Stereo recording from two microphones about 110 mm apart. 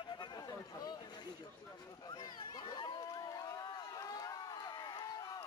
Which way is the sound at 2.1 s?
40° left (ahead or behind).